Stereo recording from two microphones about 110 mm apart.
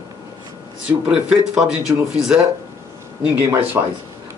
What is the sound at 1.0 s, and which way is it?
A man's voice, 10° right (ahead or behind).